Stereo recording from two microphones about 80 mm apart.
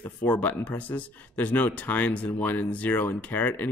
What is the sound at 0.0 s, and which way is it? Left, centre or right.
Speech, centre.